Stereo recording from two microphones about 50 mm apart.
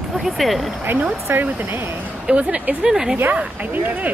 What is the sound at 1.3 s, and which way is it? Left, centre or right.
Speech, right.